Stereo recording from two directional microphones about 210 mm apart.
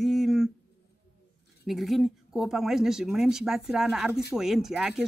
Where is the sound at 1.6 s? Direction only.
Centre (ahead or behind).